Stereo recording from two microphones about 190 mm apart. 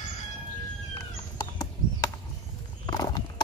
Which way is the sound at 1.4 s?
20° left (ahead or behind).